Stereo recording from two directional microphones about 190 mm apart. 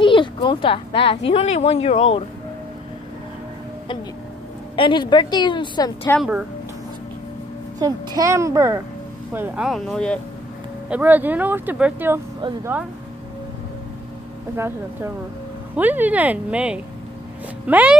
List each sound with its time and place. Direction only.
0.0 s speech: 25° left (ahead or behind)
4.7 s a woman's voice: 25° left (ahead or behind)
6.1 s speech: 15° left (ahead or behind)
7.8 s speech: 20° right (ahead or behind)
9.7 s speech: 5° left (ahead or behind)
10.9 s speech: 10° right (ahead or behind)
15.7 s speech: 10° right (ahead or behind)